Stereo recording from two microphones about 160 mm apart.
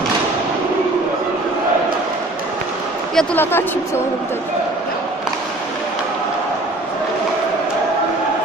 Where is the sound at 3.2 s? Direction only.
15° left (ahead or behind).